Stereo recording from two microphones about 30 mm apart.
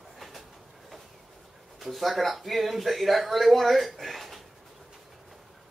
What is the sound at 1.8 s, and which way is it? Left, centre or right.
A man's voice, centre.